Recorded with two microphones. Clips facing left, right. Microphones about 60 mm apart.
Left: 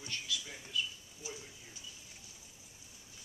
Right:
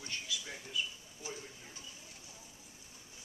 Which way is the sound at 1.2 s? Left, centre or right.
Right.